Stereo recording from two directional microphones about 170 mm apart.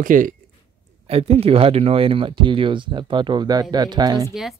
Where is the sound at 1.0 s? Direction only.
35° right (ahead or behind).